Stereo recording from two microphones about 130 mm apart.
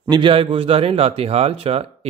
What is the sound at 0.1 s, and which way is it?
A man's voice, 40° right (ahead or behind).